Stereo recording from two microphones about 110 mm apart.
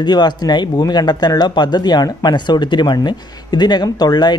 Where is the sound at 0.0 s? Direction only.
40° left (ahead or behind).